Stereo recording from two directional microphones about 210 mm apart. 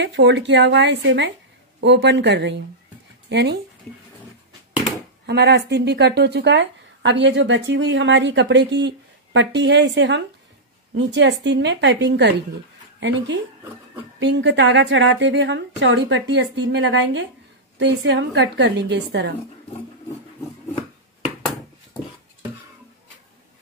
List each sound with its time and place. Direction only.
0.0 s speech: 55° right (ahead or behind)
5.2 s speech: 50° right (ahead or behind)
14.2 s speech: 55° right (ahead or behind)